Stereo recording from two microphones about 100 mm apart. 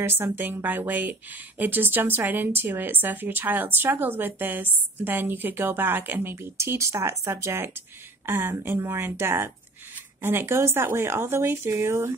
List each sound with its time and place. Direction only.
0.0 s speech: 20° right (ahead or behind)